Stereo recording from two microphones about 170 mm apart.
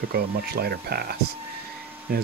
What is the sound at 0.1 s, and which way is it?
Speech, 65° right (ahead or behind).